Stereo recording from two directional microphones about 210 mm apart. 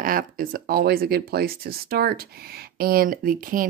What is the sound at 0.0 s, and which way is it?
Speech, 40° right (ahead or behind).